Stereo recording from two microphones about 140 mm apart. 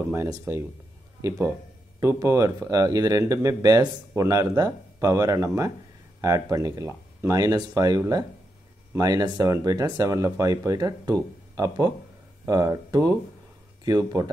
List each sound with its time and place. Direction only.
0.1 s speech: 20° right (ahead or behind)
2.0 s speech: 20° right (ahead or behind)